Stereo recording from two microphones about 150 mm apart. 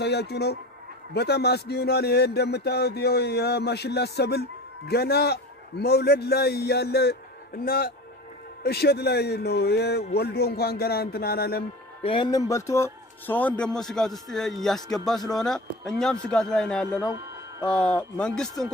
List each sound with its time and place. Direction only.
0.0 s speech: 90° left
8.6 s speech: 90° left
12.0 s a man's voice: 35° left (ahead or behind); by 18.7 s 5° left (ahead or behind)